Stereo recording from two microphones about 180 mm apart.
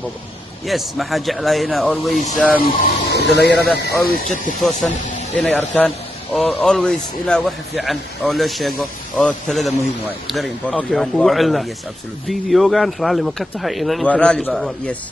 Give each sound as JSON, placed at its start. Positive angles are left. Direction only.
{"t": 0.7, "sound": "speech", "side_deg": 0}
{"t": 2.6, "sound": "speech", "side_deg": 55}
{"t": 4.1, "sound": "speech", "side_deg": 50}
{"t": 4.6, "sound": "speech", "side_deg": 0}